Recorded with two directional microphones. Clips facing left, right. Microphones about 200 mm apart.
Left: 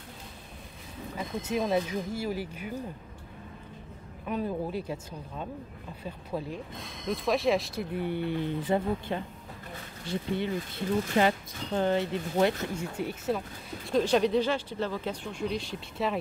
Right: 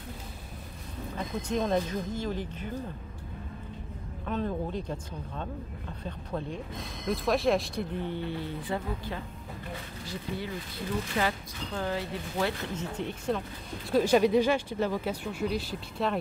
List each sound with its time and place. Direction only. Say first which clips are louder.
1.1 s speech: even; 5° left (ahead or behind)
4.3 s speech: even; 10° left (ahead or behind)
12.7 s speech: left 1 dB; 10° left (ahead or behind)
13.8 s speech: right 2 dB; 5° right (ahead or behind)